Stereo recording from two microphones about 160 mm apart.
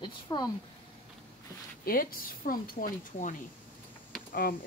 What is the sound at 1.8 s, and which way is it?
Speech, 65° left (ahead or behind).